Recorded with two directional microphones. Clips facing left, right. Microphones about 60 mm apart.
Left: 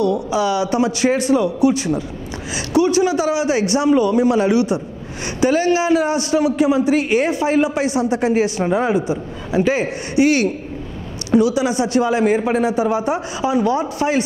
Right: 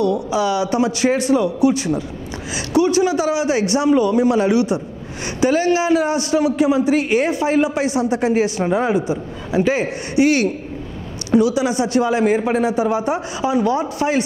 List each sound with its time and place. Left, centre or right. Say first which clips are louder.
0.0 s a man's voice: even; centre
8.6 s a man's voice: even; left